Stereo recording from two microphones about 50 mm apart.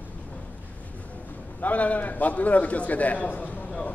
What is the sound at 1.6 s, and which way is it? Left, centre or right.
A man's voice, left.